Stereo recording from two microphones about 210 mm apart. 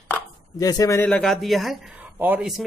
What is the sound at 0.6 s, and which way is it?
Speech, 15° left (ahead or behind).